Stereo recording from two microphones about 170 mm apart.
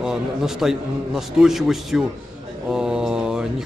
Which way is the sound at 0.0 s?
5° right (ahead or behind).